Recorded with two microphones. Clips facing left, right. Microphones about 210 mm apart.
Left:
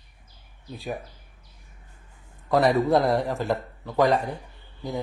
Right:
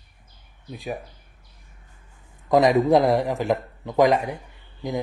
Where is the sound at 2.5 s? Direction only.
15° right (ahead or behind).